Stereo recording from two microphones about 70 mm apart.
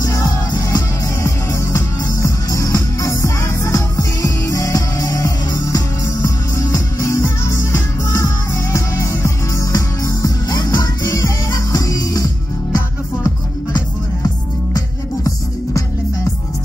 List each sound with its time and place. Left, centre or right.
0.0 s music: left
13.7 s music: left